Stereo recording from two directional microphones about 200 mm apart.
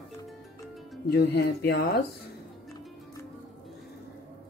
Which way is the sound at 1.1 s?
55° left (ahead or behind).